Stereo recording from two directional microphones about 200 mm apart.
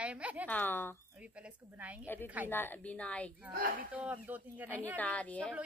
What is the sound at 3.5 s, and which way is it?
Speech, 45° right (ahead or behind).